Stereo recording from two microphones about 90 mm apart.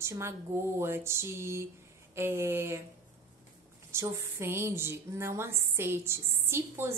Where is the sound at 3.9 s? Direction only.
30° right (ahead or behind).